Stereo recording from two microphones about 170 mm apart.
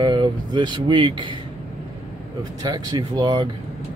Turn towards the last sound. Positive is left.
turn(degrees=-25)  # may be behind; listen again after turning